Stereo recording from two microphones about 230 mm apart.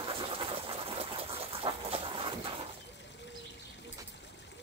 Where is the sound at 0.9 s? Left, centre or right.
Right.